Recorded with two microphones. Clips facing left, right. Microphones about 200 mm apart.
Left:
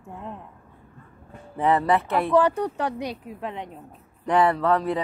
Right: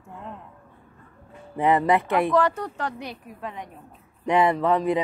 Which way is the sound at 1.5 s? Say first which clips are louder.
Right 1 dB; 15° right (ahead or behind).